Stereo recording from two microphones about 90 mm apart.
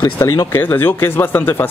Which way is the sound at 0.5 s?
25° left (ahead or behind).